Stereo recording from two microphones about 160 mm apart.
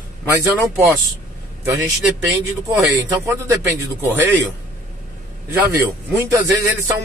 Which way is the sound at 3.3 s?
15° right (ahead or behind).